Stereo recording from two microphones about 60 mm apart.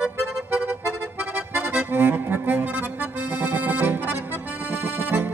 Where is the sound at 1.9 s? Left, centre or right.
Right.